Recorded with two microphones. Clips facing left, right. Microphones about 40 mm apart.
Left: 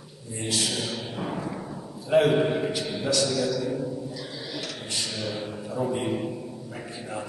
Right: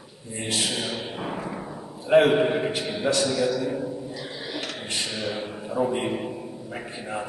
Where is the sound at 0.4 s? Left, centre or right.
Right.